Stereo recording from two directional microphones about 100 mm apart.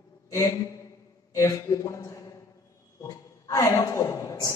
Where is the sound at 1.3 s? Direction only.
30° left (ahead or behind).